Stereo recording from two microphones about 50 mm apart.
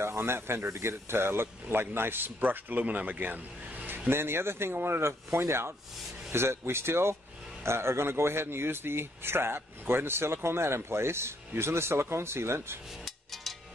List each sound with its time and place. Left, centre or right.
0.0 s speech: right
4.1 s speech: right
13.0 s a sound: centre